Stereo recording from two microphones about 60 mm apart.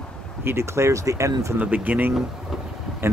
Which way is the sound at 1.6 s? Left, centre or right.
Right.